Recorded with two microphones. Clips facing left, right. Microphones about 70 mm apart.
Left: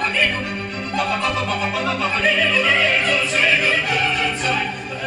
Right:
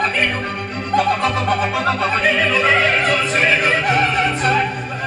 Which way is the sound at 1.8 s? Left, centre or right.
Right.